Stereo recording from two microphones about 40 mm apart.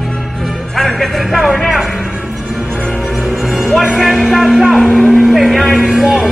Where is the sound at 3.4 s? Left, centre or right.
Centre.